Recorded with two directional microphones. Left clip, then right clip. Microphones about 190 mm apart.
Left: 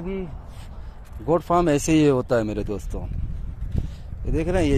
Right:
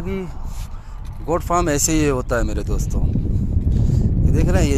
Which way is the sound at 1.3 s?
15° left (ahead or behind).